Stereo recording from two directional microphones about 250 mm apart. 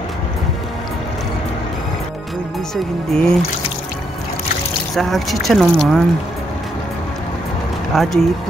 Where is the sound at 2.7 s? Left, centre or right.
Centre.